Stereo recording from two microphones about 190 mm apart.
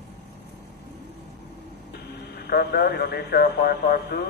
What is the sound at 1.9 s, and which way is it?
Speech, 60° left (ahead or behind).